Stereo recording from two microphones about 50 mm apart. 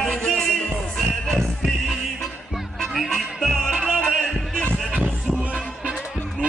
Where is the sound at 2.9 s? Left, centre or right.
Centre.